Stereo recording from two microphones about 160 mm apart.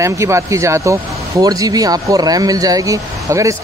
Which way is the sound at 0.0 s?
20° right (ahead or behind).